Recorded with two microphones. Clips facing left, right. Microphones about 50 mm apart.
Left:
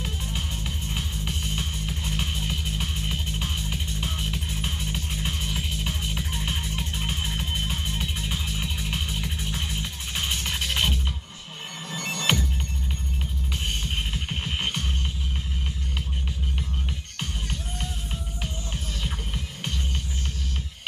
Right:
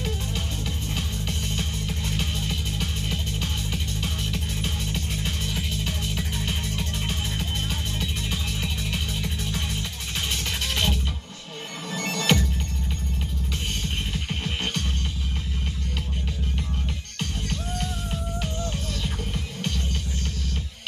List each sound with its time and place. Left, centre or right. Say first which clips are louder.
0.8 s music: right 1 dB; centre
14.4 s music: left 1 dB; centre
17.2 s music: right 3 dB; centre